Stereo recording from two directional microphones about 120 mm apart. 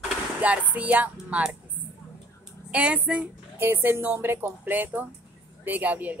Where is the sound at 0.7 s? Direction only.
10° right (ahead or behind).